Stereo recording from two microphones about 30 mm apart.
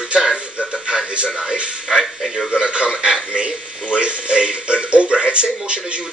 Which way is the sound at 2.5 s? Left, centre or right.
Right.